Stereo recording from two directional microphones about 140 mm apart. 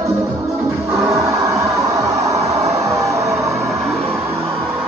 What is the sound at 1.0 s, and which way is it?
Train, 25° right (ahead or behind).